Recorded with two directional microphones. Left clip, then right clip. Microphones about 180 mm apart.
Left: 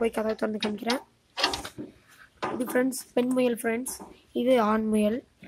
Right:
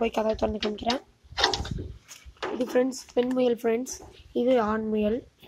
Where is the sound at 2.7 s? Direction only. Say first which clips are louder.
Right 2 dB; 15° left (ahead or behind).